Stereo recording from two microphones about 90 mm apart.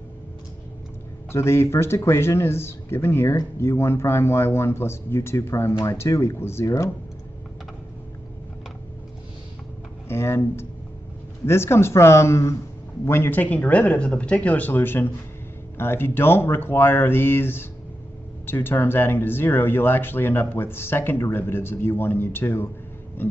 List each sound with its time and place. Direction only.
1.3 s a man's voice: 30° left (ahead or behind)
10.0 s a man's voice: 30° left (ahead or behind)